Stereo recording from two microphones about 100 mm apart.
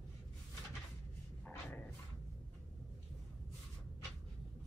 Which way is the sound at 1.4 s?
15° left (ahead or behind).